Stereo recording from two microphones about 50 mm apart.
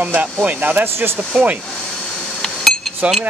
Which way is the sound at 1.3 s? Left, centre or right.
Centre.